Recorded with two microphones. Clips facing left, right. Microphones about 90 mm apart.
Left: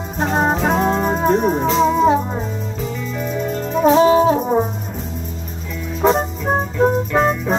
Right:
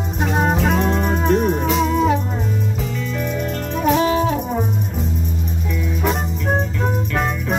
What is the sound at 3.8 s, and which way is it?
Music, 30° left (ahead or behind).